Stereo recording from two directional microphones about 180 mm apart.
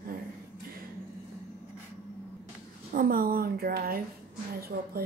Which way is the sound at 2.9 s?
50° right (ahead or behind).